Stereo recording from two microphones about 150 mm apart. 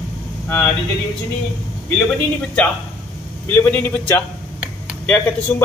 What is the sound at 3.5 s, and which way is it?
Speech, 15° left (ahead or behind).